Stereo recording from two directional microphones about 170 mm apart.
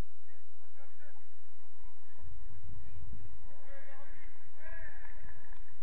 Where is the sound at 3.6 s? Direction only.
10° right (ahead or behind).